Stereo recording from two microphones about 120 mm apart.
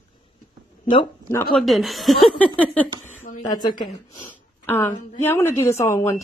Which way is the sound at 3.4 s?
35° left (ahead or behind).